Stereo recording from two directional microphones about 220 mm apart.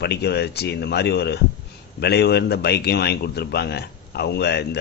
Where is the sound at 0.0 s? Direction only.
50° left (ahead or behind).